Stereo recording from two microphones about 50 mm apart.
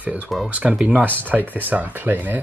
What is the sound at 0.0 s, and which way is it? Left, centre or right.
Speech, right.